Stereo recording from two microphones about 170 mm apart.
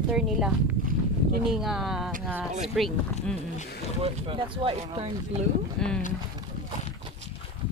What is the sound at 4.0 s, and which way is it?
Speech, 35° right (ahead or behind).